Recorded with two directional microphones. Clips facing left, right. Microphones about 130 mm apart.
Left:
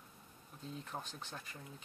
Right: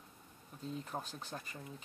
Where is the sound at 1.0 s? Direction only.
40° right (ahead or behind).